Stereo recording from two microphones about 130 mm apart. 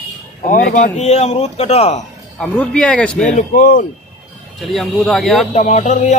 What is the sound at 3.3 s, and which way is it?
Speech, 80° left.